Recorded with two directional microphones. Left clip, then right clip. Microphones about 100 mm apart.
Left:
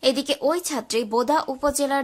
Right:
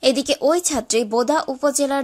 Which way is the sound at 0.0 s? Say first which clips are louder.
Right 4 dB; 30° right (ahead or behind).